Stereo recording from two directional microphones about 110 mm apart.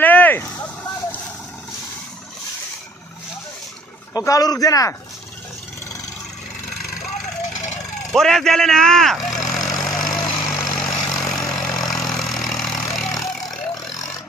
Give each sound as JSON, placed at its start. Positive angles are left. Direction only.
{"t": 0.0, "sound": "a sound", "side_deg": 15}
{"t": 4.1, "sound": "a man's voice", "side_deg": 35}
{"t": 8.1, "sound": "vehicle", "side_deg": 5}